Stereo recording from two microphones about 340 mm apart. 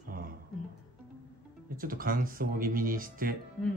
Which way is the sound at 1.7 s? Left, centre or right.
Right.